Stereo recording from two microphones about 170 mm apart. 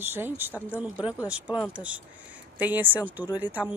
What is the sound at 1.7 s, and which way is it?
A woman's voice, 5° right (ahead or behind).